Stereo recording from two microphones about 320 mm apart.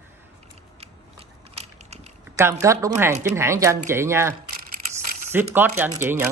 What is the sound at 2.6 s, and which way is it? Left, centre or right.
Speech, centre.